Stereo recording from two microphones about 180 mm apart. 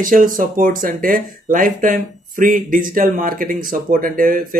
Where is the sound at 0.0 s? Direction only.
50° right (ahead or behind).